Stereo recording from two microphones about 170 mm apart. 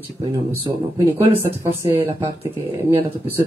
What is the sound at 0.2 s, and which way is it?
Speech, 25° right (ahead or behind).